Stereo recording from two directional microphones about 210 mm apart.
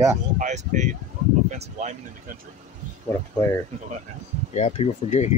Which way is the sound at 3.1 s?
15° left (ahead or behind).